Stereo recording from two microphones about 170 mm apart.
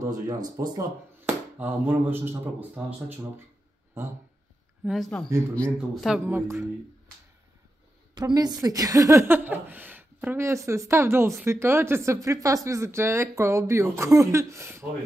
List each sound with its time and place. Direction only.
0.0 s speech: 20° right (ahead or behind)
4.8 s speech: centre (ahead or behind)
6.3 s speech: 15° right (ahead or behind)
8.1 s speech: 25° right (ahead or behind)